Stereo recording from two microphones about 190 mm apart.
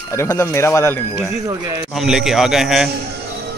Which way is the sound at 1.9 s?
Centre (ahead or behind).